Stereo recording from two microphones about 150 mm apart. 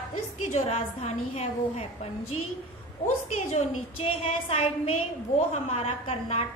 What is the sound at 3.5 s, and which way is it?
A woman's voice, 40° left (ahead or behind).